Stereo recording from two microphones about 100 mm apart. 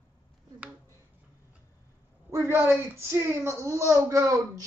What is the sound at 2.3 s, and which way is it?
A woman's voice, 25° right (ahead or behind).